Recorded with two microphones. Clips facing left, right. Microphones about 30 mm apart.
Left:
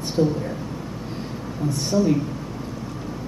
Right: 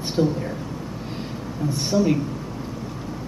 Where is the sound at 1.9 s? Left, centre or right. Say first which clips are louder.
Even; centre.